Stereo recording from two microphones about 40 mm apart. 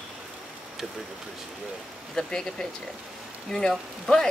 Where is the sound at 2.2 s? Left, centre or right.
Centre.